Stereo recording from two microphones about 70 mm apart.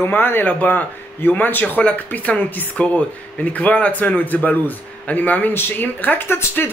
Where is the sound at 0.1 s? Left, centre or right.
Left.